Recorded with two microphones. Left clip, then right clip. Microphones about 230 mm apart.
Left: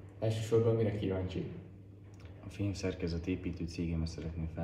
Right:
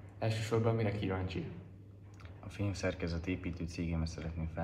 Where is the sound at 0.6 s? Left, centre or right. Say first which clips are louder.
Left 5 dB; centre.